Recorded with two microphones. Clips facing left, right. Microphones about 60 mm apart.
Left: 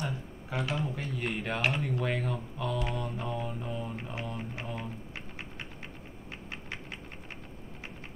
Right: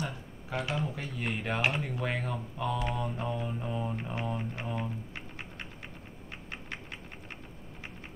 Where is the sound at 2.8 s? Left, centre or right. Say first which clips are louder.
Right 1 dB; centre.